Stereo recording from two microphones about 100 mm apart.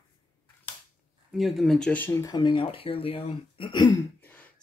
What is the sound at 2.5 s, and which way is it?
Speech, 65° left (ahead or behind).